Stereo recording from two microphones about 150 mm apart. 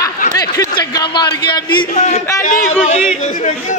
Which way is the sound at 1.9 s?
50° left (ahead or behind).